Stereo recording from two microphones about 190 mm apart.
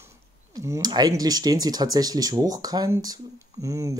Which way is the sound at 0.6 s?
20° right (ahead or behind).